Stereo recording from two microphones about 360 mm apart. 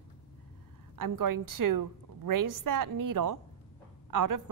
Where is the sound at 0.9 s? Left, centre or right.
Right.